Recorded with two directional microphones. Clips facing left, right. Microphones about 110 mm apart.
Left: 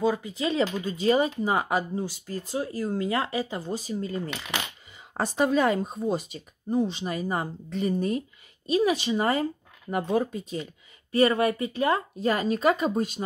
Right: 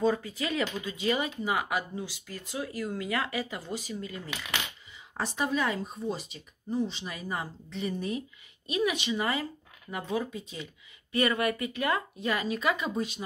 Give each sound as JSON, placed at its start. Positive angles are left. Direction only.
{"t": 0.2, "sound": "speech", "side_deg": 25}
{"t": 5.1, "sound": "speech", "side_deg": 45}
{"t": 8.6, "sound": "speech", "side_deg": 35}